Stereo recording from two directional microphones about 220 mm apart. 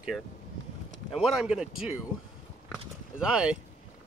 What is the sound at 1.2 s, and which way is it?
Speech, centre (ahead or behind).